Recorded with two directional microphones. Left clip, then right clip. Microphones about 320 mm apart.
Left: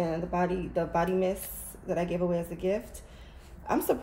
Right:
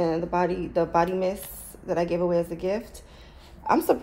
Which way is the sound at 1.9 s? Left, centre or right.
Centre.